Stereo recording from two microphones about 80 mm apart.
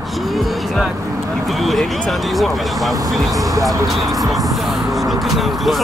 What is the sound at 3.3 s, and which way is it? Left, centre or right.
Speech, right.